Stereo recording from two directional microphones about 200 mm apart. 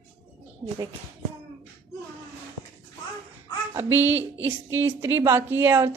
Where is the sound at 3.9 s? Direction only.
10° right (ahead or behind).